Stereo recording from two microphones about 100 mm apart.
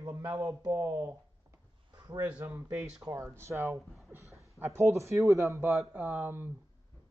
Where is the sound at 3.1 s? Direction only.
25° right (ahead or behind).